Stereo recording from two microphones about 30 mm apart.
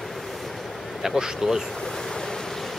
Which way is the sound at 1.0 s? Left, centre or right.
Centre.